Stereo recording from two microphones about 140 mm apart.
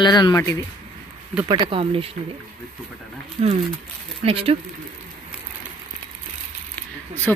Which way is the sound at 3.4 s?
50° right (ahead or behind).